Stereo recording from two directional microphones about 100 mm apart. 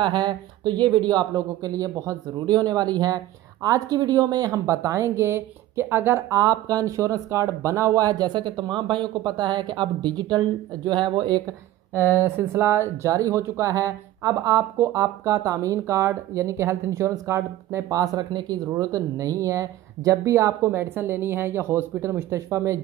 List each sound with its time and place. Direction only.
0.0 s speech: 50° right (ahead or behind); by 6.3 s 25° right (ahead or behind)
6.3 s speech: 40° right (ahead or behind)
11.9 s speech: 30° right (ahead or behind)